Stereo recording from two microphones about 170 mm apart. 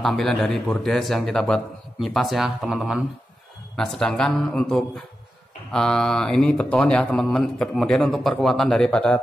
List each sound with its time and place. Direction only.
0.0 s speech: centre (ahead or behind)